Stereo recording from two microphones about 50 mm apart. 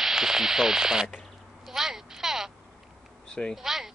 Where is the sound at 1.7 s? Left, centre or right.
Centre.